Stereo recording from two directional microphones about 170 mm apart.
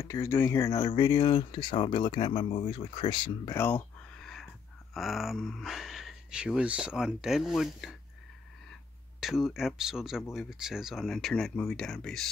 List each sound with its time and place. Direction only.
0.0 s speech: 15° left (ahead or behind)
3.5 s a sound: 10° left (ahead or behind)
4.9 s speech: centre (ahead or behind)
9.2 s speech: centre (ahead or behind)